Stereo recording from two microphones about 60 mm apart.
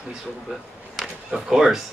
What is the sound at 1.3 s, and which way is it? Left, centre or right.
Speech, centre.